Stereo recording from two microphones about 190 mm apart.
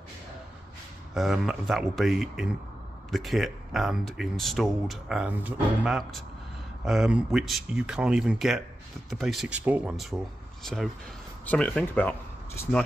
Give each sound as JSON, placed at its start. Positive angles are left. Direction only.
{"t": 1.1, "sound": "speech", "side_deg": 0}